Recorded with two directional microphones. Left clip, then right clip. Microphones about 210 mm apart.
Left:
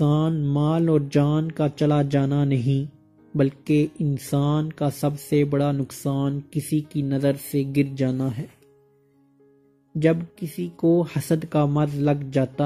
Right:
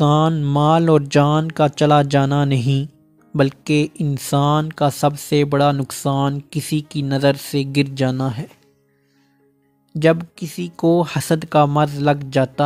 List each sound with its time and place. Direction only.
0.0 s speech: 45° right (ahead or behind)
9.9 s speech: 45° right (ahead or behind)